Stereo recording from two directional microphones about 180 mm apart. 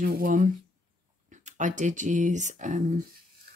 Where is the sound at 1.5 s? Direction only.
45° right (ahead or behind).